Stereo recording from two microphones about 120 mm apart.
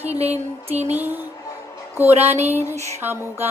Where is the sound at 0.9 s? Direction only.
15° right (ahead or behind).